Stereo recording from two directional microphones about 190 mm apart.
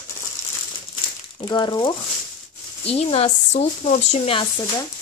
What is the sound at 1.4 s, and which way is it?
Speech, 25° left (ahead or behind).